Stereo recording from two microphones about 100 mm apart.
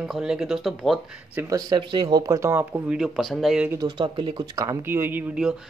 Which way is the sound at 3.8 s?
50° right (ahead or behind).